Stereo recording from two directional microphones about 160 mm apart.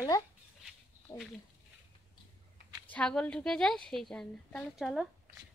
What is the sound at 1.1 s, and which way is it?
Speech, 20° left (ahead or behind).